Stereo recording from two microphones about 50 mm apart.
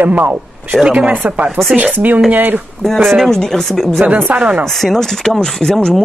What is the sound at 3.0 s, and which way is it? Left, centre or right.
Speech, centre.